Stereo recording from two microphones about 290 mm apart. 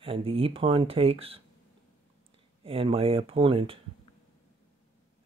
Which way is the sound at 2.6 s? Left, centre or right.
Centre.